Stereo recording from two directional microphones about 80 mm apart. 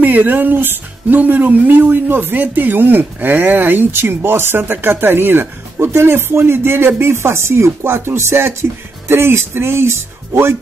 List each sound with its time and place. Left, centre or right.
0.0 s a man's voice: right